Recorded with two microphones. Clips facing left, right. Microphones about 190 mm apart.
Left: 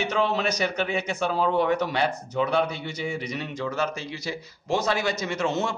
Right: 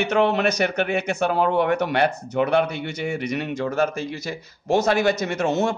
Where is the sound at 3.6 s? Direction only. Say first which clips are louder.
Right 5 dB; 50° right (ahead or behind).